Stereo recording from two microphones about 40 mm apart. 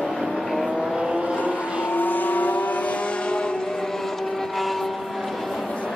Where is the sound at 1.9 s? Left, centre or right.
Left.